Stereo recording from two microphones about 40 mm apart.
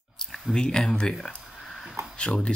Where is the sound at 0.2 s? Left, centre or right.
Centre.